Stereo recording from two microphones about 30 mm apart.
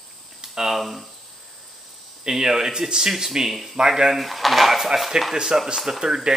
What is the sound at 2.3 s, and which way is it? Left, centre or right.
Speech, centre.